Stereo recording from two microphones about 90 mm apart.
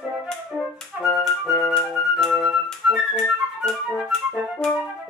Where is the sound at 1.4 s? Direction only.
35° left (ahead or behind).